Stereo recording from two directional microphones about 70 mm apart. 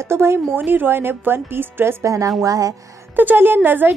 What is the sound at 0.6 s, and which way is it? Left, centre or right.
A woman's voice, right.